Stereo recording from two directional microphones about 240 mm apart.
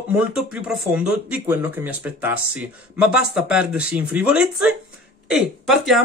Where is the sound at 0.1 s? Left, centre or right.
Centre.